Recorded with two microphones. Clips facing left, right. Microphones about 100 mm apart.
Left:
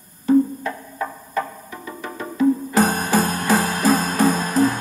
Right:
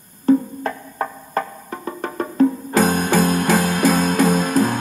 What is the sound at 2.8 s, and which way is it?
Music, 35° left (ahead or behind).